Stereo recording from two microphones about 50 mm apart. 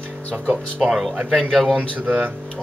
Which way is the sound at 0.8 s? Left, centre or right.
Centre.